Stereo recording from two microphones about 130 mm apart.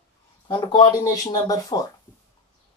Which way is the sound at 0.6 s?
40° left (ahead or behind).